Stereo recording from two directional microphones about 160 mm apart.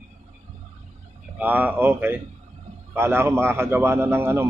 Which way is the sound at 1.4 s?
10° right (ahead or behind).